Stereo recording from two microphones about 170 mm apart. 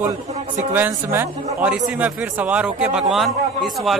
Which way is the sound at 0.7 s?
10° right (ahead or behind).